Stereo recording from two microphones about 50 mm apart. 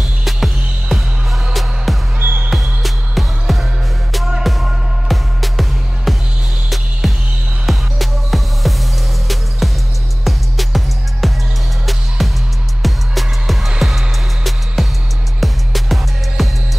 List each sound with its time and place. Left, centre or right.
0.0 s music: centre
2.1 s music: right
2.5 s music: centre